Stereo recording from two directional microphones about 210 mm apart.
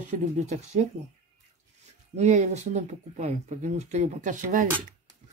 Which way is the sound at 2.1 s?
35° right (ahead or behind).